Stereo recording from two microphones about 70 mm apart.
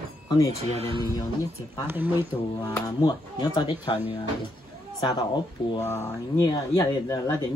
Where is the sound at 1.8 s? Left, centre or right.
Right.